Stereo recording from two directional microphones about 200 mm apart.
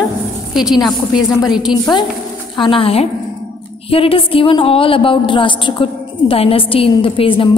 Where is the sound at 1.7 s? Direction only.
20° left (ahead or behind).